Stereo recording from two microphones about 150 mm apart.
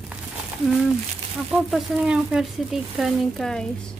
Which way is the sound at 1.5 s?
Centre (ahead or behind).